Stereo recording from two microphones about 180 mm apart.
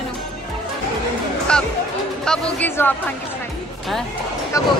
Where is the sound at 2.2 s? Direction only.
5° left (ahead or behind).